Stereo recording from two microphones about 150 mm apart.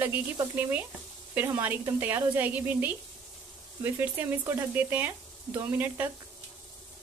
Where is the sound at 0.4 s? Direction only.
15° right (ahead or behind).